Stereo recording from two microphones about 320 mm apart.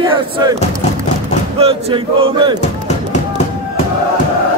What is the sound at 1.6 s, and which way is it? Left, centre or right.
Speech, centre.